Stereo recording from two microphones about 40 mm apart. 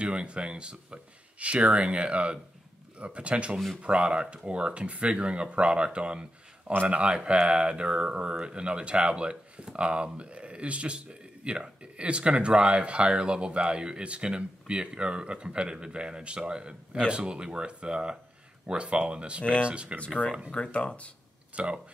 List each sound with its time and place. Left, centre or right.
0.0 s speech: right
3.5 s speech: centre
3.8 s speech: right
20.5 s speech: left
21.6 s speech: right